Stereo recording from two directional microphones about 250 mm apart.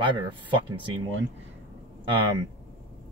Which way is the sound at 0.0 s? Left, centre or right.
Centre.